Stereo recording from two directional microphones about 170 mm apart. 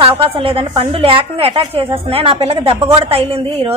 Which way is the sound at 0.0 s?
35° right (ahead or behind).